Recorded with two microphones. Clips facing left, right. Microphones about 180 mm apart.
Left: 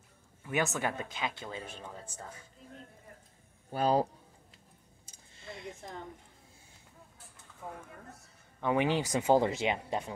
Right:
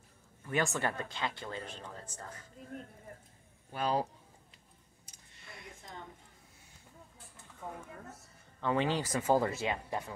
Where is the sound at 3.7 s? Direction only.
35° left (ahead or behind).